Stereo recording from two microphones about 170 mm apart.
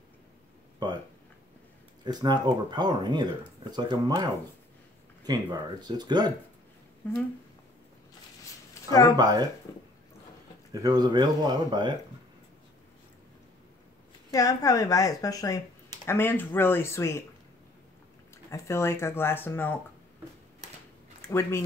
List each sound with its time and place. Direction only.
2.0 s speech: 25° right (ahead or behind)
7.0 s speech: 10° left (ahead or behind)
9.1 s speech: 25° right (ahead or behind)
9.7 s a sound: 20° left (ahead or behind)
10.7 s speech: 20° right (ahead or behind)
14.3 s a woman's voice: 20° left (ahead or behind)
18.5 s speech: 15° left (ahead or behind)
21.3 s speech: 15° left (ahead or behind)